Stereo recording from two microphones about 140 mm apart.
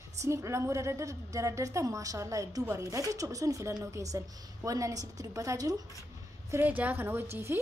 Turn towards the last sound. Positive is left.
turn(degrees=-15)  # may be behind; listen again after turning